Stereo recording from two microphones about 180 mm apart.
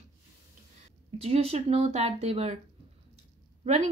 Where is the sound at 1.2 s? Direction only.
35° right (ahead or behind).